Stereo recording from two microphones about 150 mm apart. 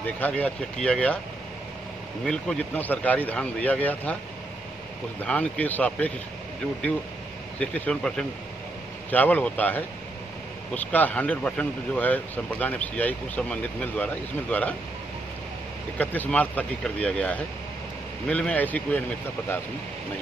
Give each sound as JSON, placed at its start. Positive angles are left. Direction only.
{"t": 0.0, "sound": "speech", "side_deg": 10}
{"t": 2.2, "sound": "speech", "side_deg": 5}
{"t": 5.2, "sound": "speech", "side_deg": 10}
{"t": 7.5, "sound": "speech", "side_deg": 5}
{"t": 16.0, "sound": "speech", "side_deg": 10}